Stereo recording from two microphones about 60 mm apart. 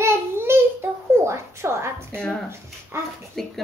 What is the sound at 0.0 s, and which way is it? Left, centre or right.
Baby cry, right.